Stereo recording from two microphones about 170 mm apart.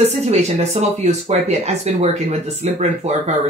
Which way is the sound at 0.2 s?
40° right (ahead or behind).